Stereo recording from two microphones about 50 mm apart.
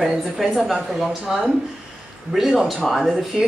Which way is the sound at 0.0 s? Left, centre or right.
Centre.